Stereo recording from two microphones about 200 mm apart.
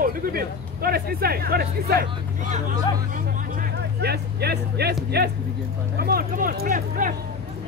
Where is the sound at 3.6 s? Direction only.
55° right (ahead or behind).